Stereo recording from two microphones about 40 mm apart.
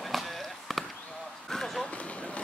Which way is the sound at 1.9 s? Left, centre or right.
Left.